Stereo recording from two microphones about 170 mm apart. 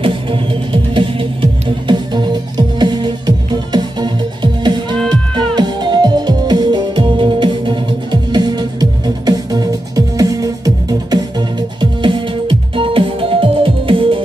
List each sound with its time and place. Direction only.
0.0 s music: 30° right (ahead or behind)